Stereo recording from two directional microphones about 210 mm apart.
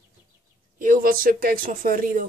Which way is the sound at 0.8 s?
40° right (ahead or behind).